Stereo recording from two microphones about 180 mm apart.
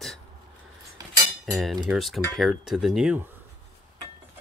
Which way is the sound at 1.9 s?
Centre (ahead or behind).